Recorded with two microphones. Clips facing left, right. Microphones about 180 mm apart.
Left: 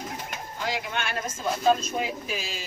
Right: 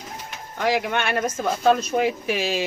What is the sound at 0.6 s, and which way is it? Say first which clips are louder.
Speech: right 9 dB; 65° right (ahead or behind).